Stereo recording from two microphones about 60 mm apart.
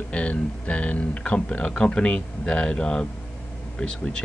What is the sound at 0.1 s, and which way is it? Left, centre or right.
Speech, left.